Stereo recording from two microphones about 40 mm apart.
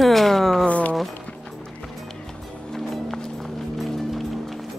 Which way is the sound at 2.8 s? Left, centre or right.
Centre.